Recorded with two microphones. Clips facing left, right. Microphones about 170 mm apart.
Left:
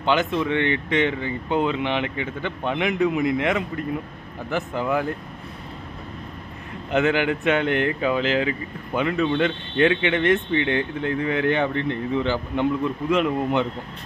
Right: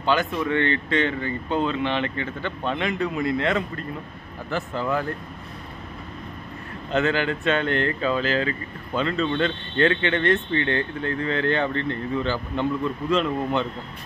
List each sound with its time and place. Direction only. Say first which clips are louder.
0.0 s speech: left 2 dB; 20° left (ahead or behind)
6.9 s speech: left 2 dB; 15° left (ahead or behind)